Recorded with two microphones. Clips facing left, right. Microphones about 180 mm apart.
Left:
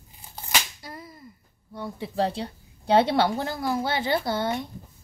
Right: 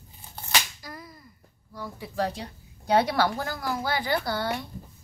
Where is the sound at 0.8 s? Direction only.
25° left (ahead or behind).